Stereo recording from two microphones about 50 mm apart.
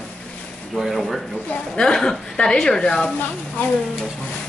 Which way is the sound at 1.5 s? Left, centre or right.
Centre.